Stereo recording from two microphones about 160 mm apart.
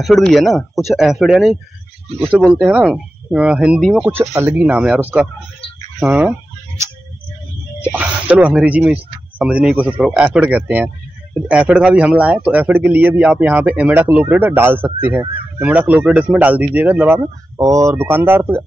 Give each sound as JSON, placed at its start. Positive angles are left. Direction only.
{"t": 0.0, "sound": "speech", "side_deg": 0}
{"t": 2.0, "sound": "speech", "side_deg": -35}
{"t": 2.3, "sound": "speech", "side_deg": -5}
{"t": 7.8, "sound": "speech", "side_deg": -10}